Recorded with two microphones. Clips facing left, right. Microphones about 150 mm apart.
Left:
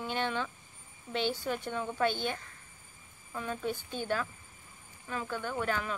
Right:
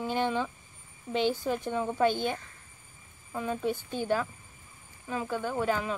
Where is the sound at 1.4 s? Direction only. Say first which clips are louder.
Right 4 dB; 35° right (ahead or behind).